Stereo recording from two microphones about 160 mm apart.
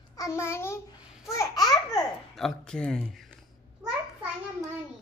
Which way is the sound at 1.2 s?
20° left (ahead or behind).